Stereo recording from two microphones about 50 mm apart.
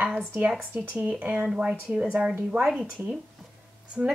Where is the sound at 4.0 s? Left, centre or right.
Centre.